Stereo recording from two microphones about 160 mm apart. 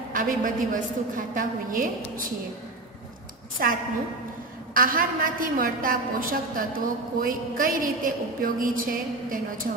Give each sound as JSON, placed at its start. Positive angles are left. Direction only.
{"t": 0.1, "sound": "a woman's voice", "side_deg": -55}
{"t": 3.6, "sound": "a woman's voice", "side_deg": -65}